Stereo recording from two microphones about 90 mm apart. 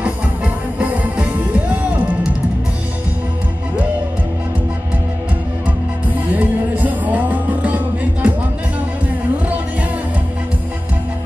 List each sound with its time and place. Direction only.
0.0 s music: 15° right (ahead or behind)
6.3 s music: 20° right (ahead or behind)